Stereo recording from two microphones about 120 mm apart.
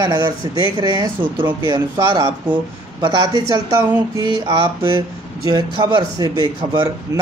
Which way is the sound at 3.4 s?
30° right (ahead or behind).